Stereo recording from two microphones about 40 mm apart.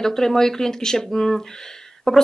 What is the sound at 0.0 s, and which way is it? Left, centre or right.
A woman's voice, centre.